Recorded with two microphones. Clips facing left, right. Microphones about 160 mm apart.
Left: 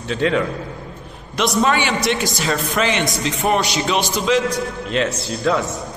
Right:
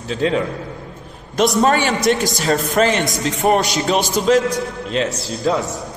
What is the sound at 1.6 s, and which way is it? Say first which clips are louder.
A man's voice: right 2 dB; 40° right (ahead or behind).